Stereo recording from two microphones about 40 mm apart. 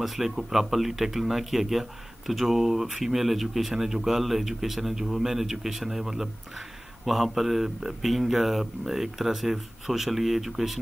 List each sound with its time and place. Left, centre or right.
0.0 s speech: centre